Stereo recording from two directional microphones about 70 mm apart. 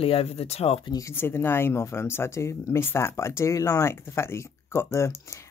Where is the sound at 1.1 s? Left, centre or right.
Left.